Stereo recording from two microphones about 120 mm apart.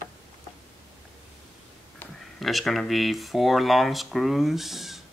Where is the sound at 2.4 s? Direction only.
Centre (ahead or behind).